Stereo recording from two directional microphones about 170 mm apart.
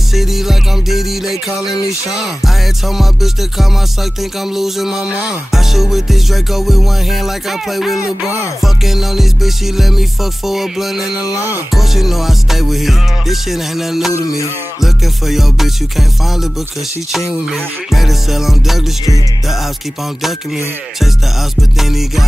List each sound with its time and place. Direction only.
0.1 s music: centre (ahead or behind)
14.1 s music: 20° left (ahead or behind)
14.8 s music: centre (ahead or behind)
17.5 s music: centre (ahead or behind)
21.5 s music: centre (ahead or behind)